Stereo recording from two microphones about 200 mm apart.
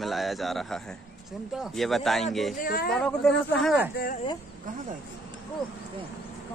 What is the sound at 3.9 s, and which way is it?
Speech, 45° left (ahead or behind).